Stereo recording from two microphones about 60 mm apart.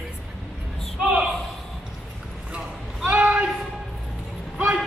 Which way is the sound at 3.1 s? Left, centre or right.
Right.